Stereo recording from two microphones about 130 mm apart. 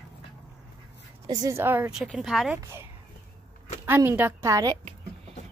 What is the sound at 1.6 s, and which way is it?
Speech, 15° right (ahead or behind).